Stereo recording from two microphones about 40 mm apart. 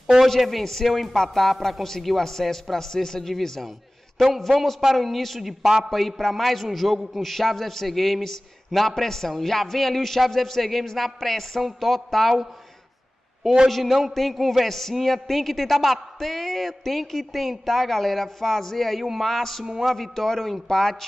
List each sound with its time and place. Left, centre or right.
0.4 s a man's voice: centre
5.9 s a man's voice: centre
13.7 s a man's voice: centre
19.6 s a man's voice: centre